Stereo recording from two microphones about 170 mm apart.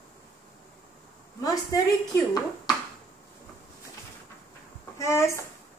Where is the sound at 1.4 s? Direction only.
20° left (ahead or behind).